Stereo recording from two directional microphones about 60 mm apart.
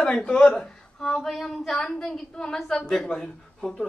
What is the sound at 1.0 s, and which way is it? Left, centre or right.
A woman's voice, centre.